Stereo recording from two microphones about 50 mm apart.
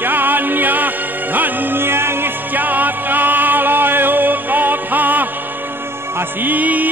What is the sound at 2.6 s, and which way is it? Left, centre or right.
Music, right.